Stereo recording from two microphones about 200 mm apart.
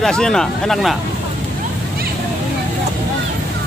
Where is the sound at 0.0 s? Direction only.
5° left (ahead or behind).